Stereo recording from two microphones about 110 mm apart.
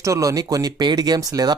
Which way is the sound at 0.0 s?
30° right (ahead or behind).